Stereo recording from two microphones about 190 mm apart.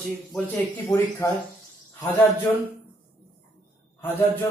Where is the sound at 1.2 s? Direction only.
15° left (ahead or behind).